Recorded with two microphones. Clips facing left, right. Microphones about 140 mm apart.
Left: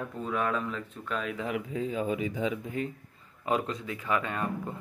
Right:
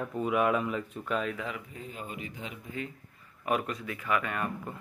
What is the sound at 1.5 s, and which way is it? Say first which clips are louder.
Speech: left 9 dB; 90° left.